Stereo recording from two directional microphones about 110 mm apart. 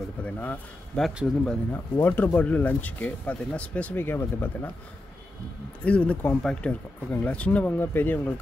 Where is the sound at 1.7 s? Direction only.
20° left (ahead or behind).